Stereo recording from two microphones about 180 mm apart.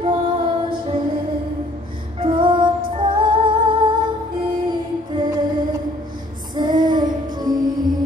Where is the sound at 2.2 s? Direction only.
25° right (ahead or behind).